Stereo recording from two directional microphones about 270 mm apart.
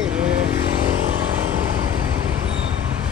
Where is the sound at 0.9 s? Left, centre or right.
Right.